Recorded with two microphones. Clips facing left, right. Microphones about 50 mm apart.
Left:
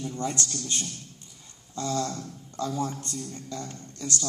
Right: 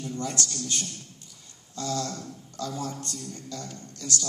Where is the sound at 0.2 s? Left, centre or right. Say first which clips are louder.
Left 1 dB; left.